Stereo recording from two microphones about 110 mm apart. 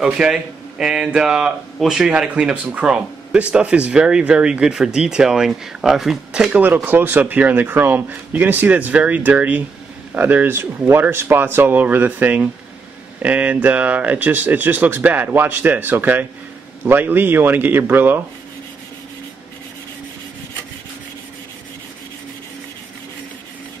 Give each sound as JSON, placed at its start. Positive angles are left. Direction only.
{"t": 0.0, "sound": "speech", "side_deg": -5}